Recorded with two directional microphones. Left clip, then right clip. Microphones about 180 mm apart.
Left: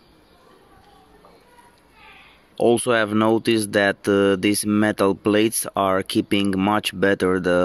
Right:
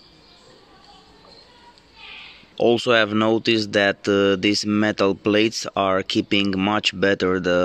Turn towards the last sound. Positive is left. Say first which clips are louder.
# even
turn(degrees=15)  # may be behind; listen again after turning